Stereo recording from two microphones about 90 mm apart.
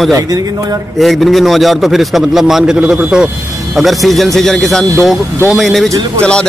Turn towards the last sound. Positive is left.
turn(degrees=10)  # may be behind; listen again after turning